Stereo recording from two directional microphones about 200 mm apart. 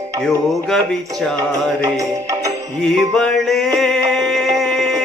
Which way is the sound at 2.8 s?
5° left (ahead or behind).